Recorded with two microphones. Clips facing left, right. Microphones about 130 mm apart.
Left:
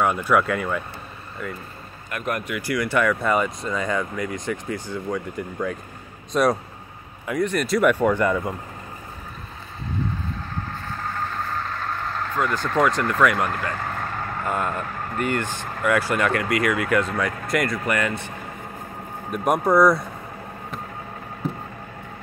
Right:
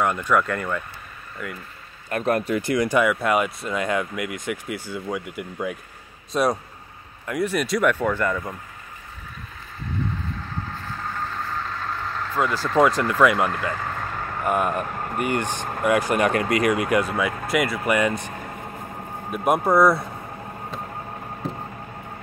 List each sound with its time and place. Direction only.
0.0 s speech: 5° left (ahead or behind)
2.0 s speech: 35° right (ahead or behind); by 7.9 s centre (ahead or behind)
7.9 s speech: 10° left (ahead or behind)
12.4 s speech: 5° right (ahead or behind)
19.3 s speech: 5° right (ahead or behind)